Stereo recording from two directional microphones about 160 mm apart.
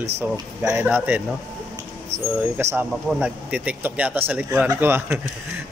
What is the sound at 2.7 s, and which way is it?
A man's voice, 10° right (ahead or behind).